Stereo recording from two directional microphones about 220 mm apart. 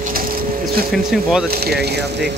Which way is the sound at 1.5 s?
45° right (ahead or behind).